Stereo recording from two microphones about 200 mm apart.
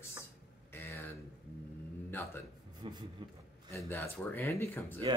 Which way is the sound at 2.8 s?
25° right (ahead or behind).